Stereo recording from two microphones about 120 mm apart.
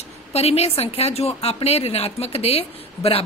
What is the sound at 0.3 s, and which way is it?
A woman's voice, 60° left (ahead or behind).